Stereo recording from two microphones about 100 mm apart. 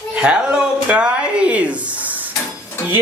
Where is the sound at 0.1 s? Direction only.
10° right (ahead or behind).